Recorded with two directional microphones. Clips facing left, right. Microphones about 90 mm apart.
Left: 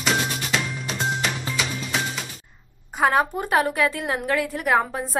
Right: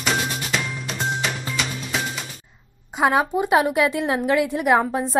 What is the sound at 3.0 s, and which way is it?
A woman's voice, 15° right (ahead or behind).